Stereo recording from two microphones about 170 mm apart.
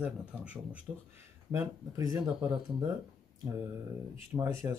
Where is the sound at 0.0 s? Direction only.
10° right (ahead or behind).